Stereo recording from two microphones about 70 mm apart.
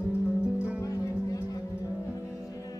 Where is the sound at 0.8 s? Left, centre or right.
Left.